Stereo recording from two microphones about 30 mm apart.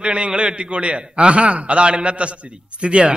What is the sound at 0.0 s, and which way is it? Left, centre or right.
Speech, right.